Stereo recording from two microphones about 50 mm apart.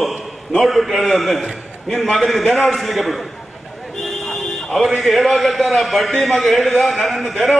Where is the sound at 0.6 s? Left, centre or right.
Centre.